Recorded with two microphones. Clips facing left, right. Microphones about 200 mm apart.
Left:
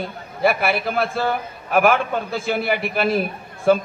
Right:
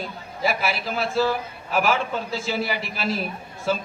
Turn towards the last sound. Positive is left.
turn(degrees=55)  # may be behind; listen again after turning